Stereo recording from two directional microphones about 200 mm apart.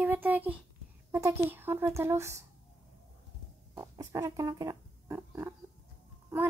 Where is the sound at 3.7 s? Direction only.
20° right (ahead or behind).